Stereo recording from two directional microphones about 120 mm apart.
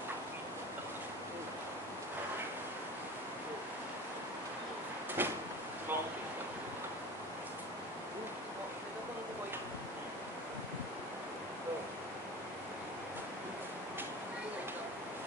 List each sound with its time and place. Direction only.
5.2 s drawer open or close: 15° right (ahead or behind)